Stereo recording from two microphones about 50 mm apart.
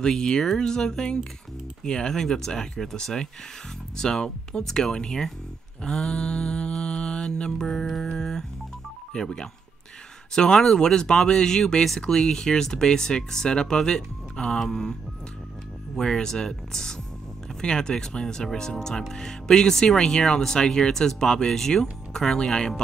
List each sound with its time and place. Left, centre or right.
0.0 s speech: centre
5.9 s mantra: centre
9.1 s speech: centre
16.0 s speech: centre